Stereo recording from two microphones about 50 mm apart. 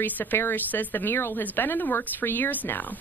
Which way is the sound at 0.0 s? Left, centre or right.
Left.